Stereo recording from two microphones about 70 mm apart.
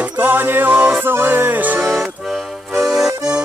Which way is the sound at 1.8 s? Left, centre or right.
Centre.